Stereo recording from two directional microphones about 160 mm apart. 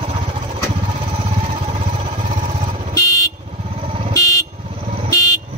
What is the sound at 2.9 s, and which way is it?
Vehicle, 20° left (ahead or behind).